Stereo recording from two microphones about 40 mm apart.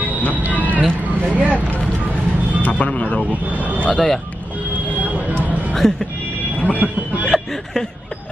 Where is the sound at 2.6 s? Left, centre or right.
Left.